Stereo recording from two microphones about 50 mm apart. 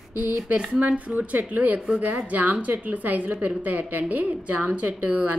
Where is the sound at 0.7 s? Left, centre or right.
Right.